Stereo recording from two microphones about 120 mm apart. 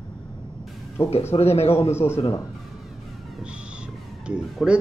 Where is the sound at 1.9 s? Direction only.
20° left (ahead or behind).